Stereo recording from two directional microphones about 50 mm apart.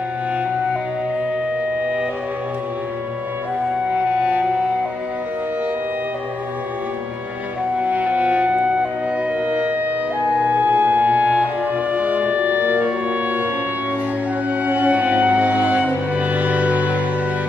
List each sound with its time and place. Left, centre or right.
3.9 s music: right
7.8 s music: right
14.6 s music: right